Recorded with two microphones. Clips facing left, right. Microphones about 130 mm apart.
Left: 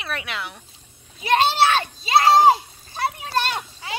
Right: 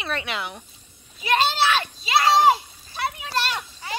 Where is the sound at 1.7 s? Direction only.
35° left (ahead or behind).